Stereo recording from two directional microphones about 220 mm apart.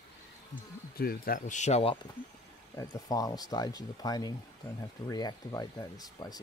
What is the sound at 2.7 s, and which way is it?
Speech, 15° left (ahead or behind).